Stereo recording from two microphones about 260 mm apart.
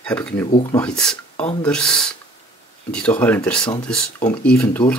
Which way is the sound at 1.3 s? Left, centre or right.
Left.